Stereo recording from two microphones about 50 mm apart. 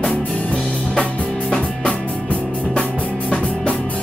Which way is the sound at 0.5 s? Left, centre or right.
Left.